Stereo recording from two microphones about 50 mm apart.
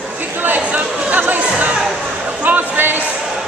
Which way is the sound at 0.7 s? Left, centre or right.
Right.